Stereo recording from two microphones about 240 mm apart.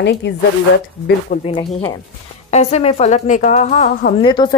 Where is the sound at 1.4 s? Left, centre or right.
Left.